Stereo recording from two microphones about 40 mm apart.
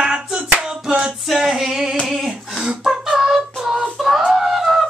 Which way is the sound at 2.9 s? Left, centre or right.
Centre.